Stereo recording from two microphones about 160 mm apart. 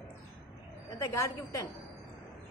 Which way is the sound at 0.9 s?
20° left (ahead or behind).